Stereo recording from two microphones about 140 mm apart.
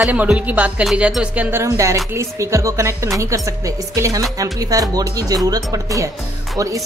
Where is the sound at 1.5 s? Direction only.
20° right (ahead or behind).